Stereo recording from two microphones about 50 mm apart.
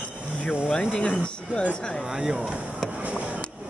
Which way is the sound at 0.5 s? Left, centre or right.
Centre.